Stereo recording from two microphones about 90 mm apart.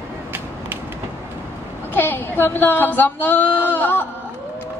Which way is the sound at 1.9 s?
20° left (ahead or behind).